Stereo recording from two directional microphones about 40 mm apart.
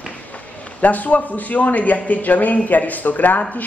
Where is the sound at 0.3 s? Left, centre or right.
Left.